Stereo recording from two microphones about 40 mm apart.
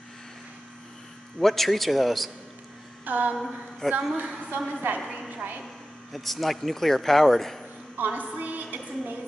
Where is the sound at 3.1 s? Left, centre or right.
Right.